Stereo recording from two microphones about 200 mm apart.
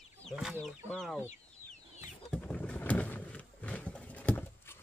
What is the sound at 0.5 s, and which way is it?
Speech, 5° left (ahead or behind).